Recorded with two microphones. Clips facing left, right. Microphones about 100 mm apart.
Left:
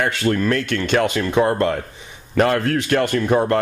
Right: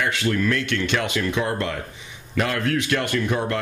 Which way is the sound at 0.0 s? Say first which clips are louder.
Left 3 dB; 40° left (ahead or behind).